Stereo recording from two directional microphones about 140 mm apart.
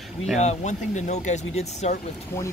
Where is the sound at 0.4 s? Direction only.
55° left (ahead or behind).